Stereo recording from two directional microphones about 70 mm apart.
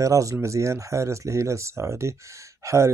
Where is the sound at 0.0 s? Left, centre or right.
Right.